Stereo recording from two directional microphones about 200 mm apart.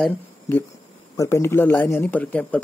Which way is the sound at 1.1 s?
15° left (ahead or behind).